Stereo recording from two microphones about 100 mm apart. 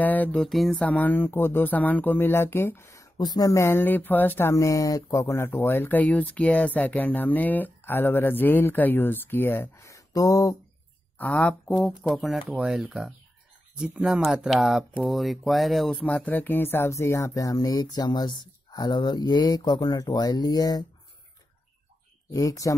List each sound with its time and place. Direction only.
0.0 s music: 15° left (ahead or behind)
0.4 s speech: centre (ahead or behind)
0.7 s speech: 15° left (ahead or behind); by 10.5 s 35° left (ahead or behind)
11.1 s speech: 15° left (ahead or behind)
16.0 s speech: 15° left (ahead or behind); by 20.8 s 40° left (ahead or behind)
22.3 s speech: 35° left (ahead or behind)